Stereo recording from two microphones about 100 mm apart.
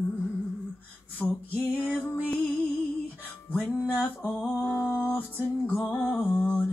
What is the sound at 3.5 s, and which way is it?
Music, 15° left (ahead or behind).